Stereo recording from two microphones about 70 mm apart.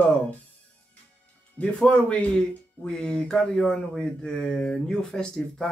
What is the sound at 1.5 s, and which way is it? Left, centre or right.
Speech, centre.